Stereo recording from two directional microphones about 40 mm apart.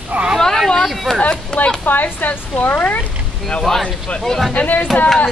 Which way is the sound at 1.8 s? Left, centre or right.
Left.